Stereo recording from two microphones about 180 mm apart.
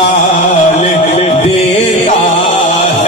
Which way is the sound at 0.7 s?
35° left (ahead or behind).